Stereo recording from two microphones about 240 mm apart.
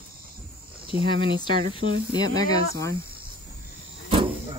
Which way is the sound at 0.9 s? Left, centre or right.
Left.